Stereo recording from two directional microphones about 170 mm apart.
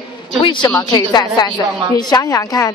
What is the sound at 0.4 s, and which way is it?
A woman's voice, 30° left (ahead or behind).